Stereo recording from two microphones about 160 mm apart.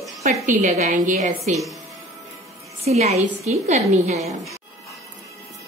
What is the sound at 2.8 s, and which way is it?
A woman's voice, 40° right (ahead or behind).